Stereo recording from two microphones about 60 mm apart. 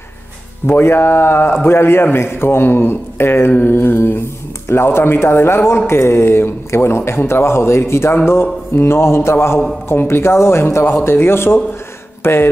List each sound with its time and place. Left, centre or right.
0.7 s a man's voice: left